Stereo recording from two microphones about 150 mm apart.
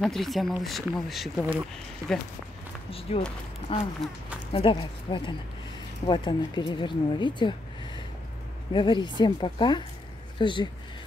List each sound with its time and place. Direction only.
0.0 s speech: centre (ahead or behind)
2.9 s speech: 40° left (ahead or behind)
8.7 s speech: 30° left (ahead or behind)